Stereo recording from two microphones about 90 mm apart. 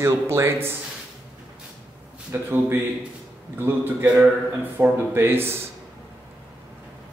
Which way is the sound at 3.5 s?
25° right (ahead or behind).